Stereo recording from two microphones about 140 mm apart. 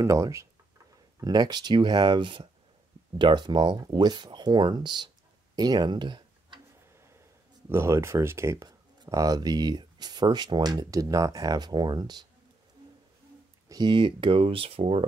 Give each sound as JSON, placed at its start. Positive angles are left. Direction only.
{"t": 0.0, "sound": "speech", "side_deg": -20}
{"t": 5.6, "sound": "tick-tock", "side_deg": -30}
{"t": 7.7, "sound": "speech", "side_deg": -20}
{"t": 13.7, "sound": "speech", "side_deg": -30}